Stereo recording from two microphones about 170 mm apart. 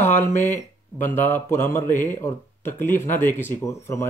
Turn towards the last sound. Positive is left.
turn(degrees=15)  # may be behind; listen again after turning